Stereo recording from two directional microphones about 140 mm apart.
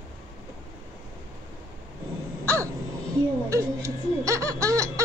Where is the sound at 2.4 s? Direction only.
20° right (ahead or behind).